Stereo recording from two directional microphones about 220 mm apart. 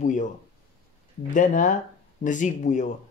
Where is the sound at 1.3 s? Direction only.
35° left (ahead or behind).